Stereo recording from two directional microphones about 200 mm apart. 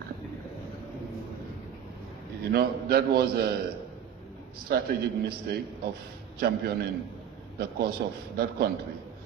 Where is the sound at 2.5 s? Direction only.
50° right (ahead or behind).